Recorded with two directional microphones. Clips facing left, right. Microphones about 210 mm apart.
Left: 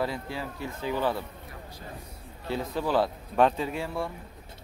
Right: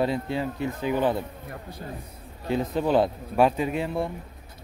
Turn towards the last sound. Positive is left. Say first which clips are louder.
# right 4 dB
turn(degrees=-20)  # may be behind; listen again after turning